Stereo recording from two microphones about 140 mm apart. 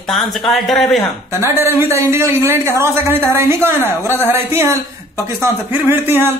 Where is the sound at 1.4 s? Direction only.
20° right (ahead or behind).